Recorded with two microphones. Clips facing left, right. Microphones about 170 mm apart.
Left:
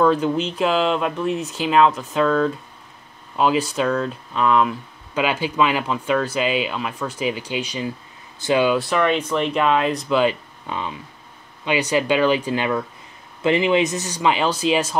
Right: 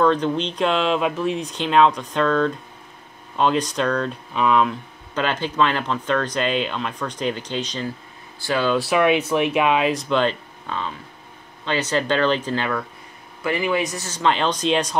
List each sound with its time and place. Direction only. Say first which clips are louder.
0.0 s speech: left 1 dB; 5° left (ahead or behind)
8.7 s speech: right 2 dB; 5° right (ahead or behind)